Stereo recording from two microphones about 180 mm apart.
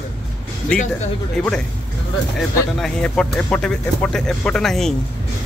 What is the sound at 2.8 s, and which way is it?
Speech, 5° left (ahead or behind).